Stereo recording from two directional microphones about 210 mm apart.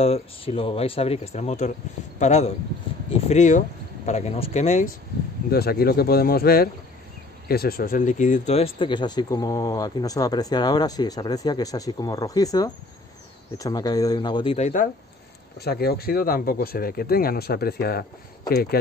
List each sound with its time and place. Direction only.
0.0 s speech: 30° left (ahead or behind)
5.5 s speech: 45° left (ahead or behind)
15.6 s speech: 50° left (ahead or behind)